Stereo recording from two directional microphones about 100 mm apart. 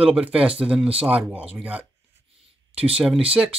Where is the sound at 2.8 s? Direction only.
10° right (ahead or behind).